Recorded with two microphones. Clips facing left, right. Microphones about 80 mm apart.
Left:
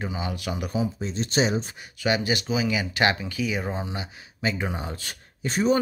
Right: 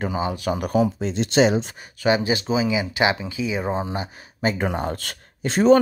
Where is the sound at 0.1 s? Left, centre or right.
Right.